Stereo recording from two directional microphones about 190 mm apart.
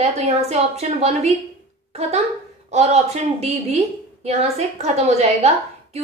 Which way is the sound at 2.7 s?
35° right (ahead or behind).